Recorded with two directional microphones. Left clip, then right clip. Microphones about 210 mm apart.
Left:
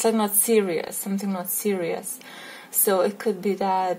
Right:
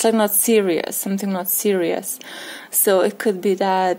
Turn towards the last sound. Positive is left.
turn(degrees=-40)  # may be behind; listen again after turning